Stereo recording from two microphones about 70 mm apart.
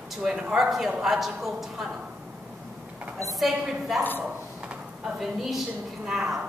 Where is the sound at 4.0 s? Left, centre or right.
Left.